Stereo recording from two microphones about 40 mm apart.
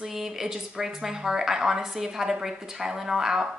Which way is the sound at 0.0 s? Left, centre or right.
Centre.